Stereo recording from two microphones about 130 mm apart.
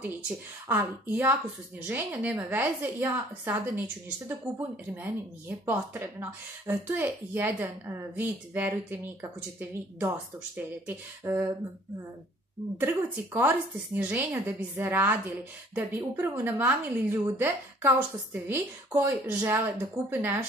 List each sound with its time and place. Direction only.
0.7 s speech: 15° right (ahead or behind)
12.7 s speech: 15° right (ahead or behind)